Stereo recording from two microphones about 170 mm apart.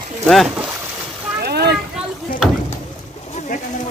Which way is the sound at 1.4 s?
70° right (ahead or behind).